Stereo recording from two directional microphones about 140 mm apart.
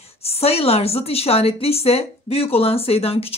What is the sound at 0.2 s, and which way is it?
A woman's voice, 45° left (ahead or behind).